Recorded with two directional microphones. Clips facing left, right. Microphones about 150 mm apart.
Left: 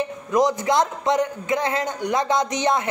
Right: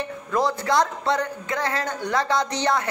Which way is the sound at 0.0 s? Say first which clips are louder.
Left 4 dB; 15° left (ahead or behind).